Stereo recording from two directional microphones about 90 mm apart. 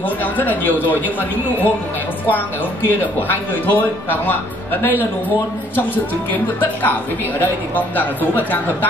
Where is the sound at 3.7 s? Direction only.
20° left (ahead or behind).